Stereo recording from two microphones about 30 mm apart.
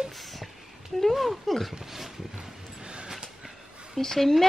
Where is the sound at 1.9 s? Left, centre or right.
Centre.